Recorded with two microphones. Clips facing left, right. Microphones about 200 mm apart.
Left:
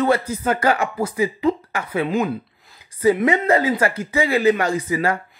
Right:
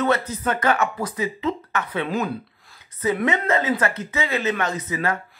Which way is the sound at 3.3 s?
35° left (ahead or behind).